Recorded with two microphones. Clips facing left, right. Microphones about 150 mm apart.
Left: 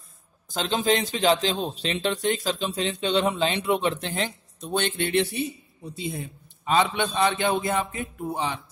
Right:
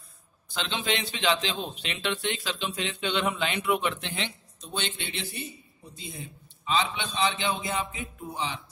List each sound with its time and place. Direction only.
0.5 s a man's voice: 40° left (ahead or behind)